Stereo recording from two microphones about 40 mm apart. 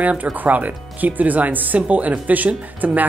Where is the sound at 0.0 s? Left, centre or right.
Right.